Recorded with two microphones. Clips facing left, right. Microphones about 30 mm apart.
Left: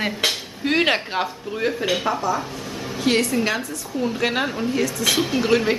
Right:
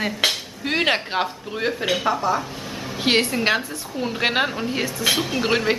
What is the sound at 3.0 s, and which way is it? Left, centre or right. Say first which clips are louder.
A woman's voice: right 1 dB; right.